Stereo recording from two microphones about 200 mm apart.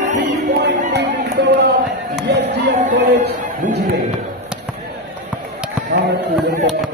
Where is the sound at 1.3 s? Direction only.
60° right (ahead or behind).